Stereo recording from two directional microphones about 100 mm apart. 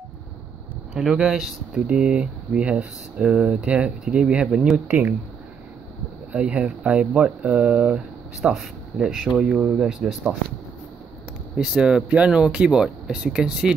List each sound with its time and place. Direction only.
0.9 s speech: 5° right (ahead or behind)
4.7 s speech: 15° right (ahead or behind)
6.3 s speech: 10° right (ahead or behind)
11.5 s speech: 10° right (ahead or behind)